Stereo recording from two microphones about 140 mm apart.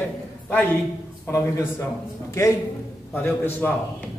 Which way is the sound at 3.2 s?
15° left (ahead or behind).